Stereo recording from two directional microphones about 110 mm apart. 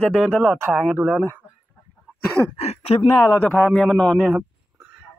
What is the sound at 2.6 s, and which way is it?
Speech, 70° left (ahead or behind).